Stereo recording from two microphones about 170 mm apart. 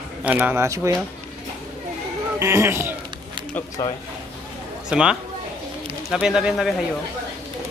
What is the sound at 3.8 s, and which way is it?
Speech, 15° left (ahead or behind).